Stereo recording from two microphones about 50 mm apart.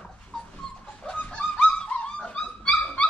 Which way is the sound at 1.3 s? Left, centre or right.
Centre.